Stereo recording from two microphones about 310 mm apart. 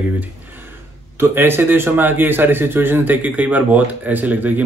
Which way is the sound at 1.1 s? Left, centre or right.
Centre.